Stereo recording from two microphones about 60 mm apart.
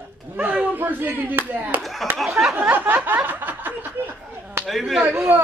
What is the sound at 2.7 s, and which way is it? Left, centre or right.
Snicker, right.